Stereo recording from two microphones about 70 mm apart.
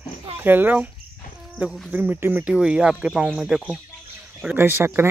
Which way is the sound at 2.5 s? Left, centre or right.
Centre.